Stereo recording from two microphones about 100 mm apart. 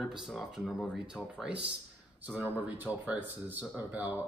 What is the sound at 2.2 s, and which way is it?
Speech, 20° right (ahead or behind).